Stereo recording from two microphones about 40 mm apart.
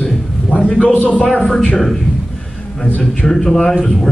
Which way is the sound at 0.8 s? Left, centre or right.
Left.